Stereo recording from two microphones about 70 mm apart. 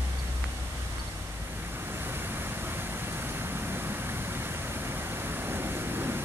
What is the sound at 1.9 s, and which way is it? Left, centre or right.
Vehicle, right.